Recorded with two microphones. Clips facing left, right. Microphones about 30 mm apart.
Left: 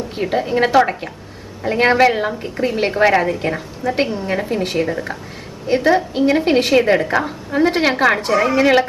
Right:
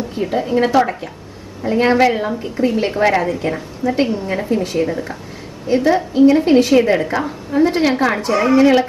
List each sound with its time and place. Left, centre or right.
0.1 s a woman's voice: left
2.9 s a woman's voice: centre
3.2 s a woman's voice: left
8.3 s a woman's voice: centre